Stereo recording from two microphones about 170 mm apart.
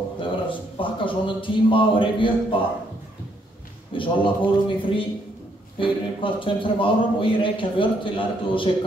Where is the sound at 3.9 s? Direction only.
30° left (ahead or behind).